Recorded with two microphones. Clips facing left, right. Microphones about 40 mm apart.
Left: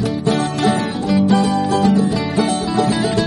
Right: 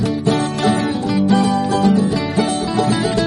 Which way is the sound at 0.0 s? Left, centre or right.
Centre.